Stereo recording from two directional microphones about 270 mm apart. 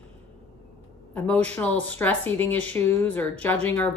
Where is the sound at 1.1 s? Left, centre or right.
Centre.